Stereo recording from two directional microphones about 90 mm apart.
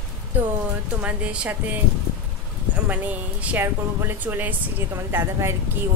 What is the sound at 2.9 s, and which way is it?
Speech, 15° right (ahead or behind).